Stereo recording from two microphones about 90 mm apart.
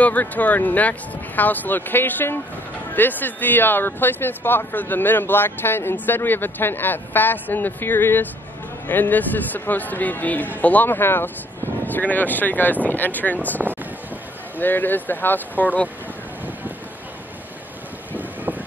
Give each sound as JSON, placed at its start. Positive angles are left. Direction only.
{"t": 0.0, "sound": "speech", "side_deg": 15}
{"t": 14.6, "sound": "speech", "side_deg": 20}